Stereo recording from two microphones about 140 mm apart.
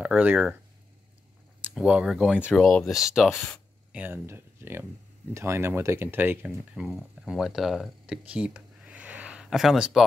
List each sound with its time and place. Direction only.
0.0 s speech: 10° right (ahead or behind)
1.6 s speech: 5° right (ahead or behind)
2.3 s speech: 10° left (ahead or behind)
3.9 s speech: 15° right (ahead or behind)